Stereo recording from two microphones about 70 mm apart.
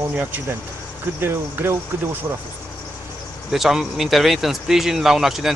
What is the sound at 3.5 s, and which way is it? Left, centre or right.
Speech, centre.